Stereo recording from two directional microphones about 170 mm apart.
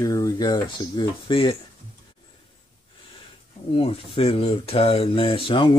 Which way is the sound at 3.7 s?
35° left (ahead or behind).